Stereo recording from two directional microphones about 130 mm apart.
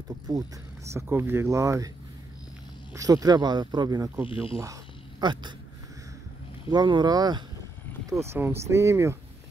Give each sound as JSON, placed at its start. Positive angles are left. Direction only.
{"t": 0.3, "sound": "speech", "side_deg": -25}
{"t": 2.9, "sound": "speech", "side_deg": -25}
{"t": 5.2, "sound": "speech", "side_deg": -35}
{"t": 6.7, "sound": "speech", "side_deg": -35}
{"t": 8.1, "sound": "speech", "side_deg": -20}